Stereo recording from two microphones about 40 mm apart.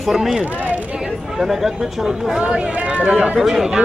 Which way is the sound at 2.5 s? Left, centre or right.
Right.